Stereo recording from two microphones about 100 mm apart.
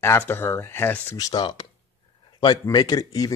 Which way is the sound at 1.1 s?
40° left (ahead or behind).